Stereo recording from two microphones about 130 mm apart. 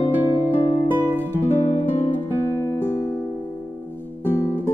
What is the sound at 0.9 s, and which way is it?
Music, 15° right (ahead or behind).